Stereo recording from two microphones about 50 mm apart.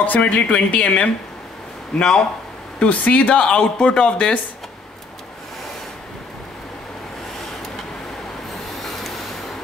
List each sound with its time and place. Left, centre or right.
0.0 s speech: left; by 2.2 s centre
2.9 s speech: left